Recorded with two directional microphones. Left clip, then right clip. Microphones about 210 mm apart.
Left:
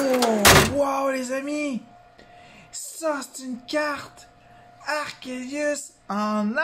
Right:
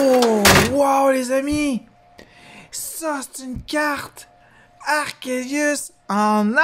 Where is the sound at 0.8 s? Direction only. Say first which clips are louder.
Right 7 dB; 40° right (ahead or behind).